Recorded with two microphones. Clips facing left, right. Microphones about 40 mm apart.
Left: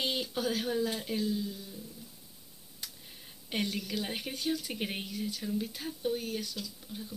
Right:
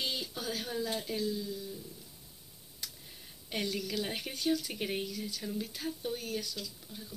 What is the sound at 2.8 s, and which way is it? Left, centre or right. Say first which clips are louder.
Tick: even; left.